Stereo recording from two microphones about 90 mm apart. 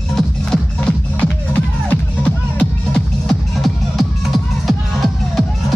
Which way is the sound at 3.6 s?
Centre (ahead or behind).